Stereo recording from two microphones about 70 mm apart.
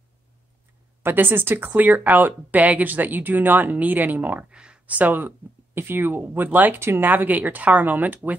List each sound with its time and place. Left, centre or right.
1.0 s speech: right
4.5 s speech: centre